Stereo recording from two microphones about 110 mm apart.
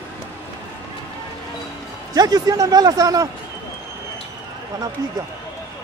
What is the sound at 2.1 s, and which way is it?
A man's voice, 35° right (ahead or behind).